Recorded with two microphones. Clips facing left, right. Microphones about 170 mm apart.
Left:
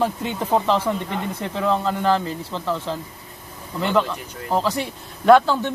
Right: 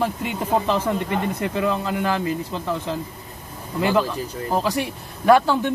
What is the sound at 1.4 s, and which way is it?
Speech, 10° right (ahead or behind).